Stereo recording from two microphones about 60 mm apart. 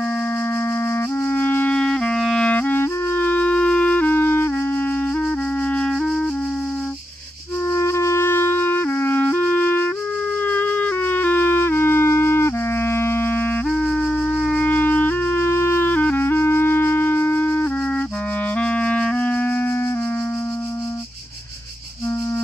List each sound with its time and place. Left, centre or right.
1.3 s clarinet: left
1.7 s clarinet: centre
2.5 s clarinet: left
2.8 s music: left
5.7 s music: centre
7.7 s music: left
10.4 s flute: left
13.7 s flute: centre
14.5 s music: left
18.6 s clarinet: centre